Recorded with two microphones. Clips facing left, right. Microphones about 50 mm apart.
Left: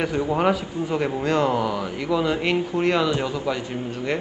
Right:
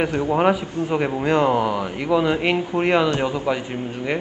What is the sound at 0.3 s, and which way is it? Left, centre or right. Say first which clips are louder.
A man's voice: right 4 dB; centre.